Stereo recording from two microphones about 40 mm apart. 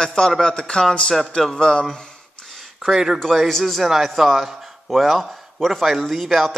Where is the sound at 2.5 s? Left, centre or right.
Centre.